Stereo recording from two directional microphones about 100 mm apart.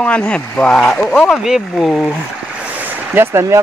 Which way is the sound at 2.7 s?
20° right (ahead or behind).